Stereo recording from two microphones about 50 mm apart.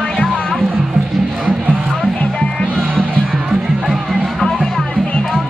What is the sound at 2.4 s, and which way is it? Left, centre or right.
Music, left.